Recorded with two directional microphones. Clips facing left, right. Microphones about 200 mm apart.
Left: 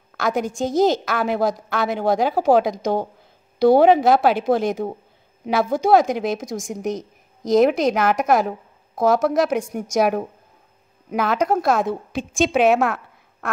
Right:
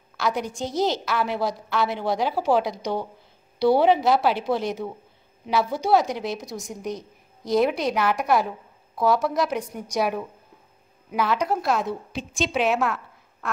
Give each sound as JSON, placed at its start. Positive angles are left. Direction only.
{"t": 0.2, "sound": "a woman's voice", "side_deg": 45}